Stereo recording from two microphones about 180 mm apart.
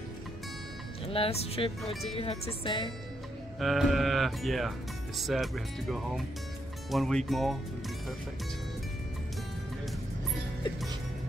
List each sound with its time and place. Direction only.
1.0 s speech: 30° left (ahead or behind)
3.5 s speech: centre (ahead or behind)